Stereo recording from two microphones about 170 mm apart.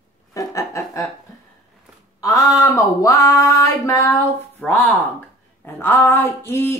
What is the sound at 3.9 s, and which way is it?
Speech, 15° left (ahead or behind).